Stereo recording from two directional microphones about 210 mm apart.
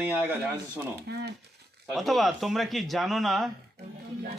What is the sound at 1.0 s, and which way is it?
Speech, 50° right (ahead or behind).